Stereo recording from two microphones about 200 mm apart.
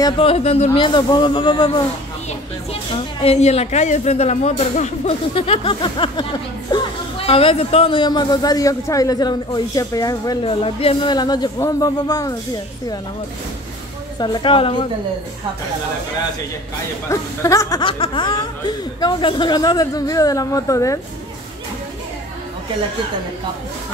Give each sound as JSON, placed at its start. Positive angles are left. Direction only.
{"t": 0.0, "sound": "a woman's voice", "side_deg": 30}
{"t": 14.2, "sound": "speech", "side_deg": 20}
{"t": 17.1, "sound": "speech", "side_deg": 15}